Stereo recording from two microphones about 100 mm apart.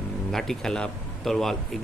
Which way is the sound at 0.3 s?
5° left (ahead or behind).